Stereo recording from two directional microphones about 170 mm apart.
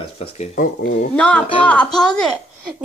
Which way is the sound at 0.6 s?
65° left (ahead or behind).